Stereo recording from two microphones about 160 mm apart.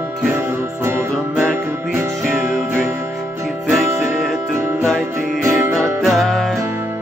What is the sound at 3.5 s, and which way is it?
Music, centre (ahead or behind).